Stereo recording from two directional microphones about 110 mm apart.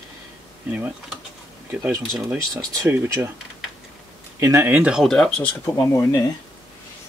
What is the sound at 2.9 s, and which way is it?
Speech, 20° right (ahead or behind).